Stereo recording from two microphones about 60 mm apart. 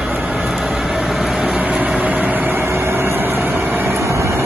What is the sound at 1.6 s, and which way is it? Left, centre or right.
Vehicle, right.